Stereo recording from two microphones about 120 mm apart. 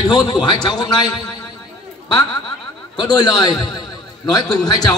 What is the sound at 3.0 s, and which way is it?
A man's voice, 35° left (ahead or behind).